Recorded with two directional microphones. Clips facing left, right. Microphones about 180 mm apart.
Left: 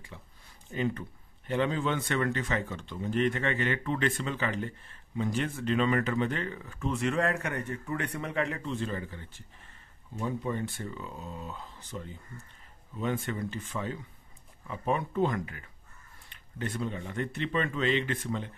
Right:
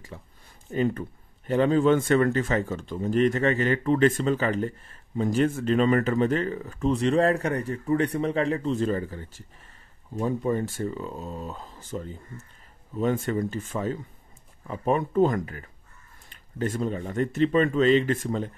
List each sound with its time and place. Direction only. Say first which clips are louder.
0.1 s speech: right 6 dB; 45° right (ahead or behind)